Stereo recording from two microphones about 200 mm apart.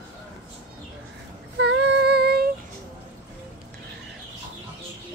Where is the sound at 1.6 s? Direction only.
55° right (ahead or behind).